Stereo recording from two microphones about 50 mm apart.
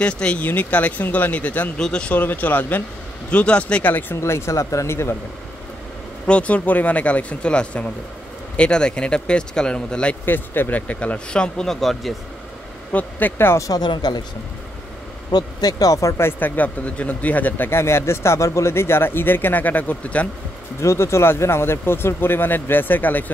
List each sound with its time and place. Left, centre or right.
0.0 s speech: left
0.4 s speech: left
1.8 s speech: centre
2.0 s speech: left
3.3 s speech: left
4.2 s speech: left
6.2 s speech: left
10.2 s speech: left; by 12.1 s centre
12.9 s speech: left
16.0 s speech: left
16.3 s speech: left
17.6 s a man's voice: left
20.8 s a man's voice: left